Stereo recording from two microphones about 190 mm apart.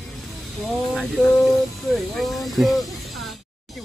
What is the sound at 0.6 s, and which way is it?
Speech, centre (ahead or behind).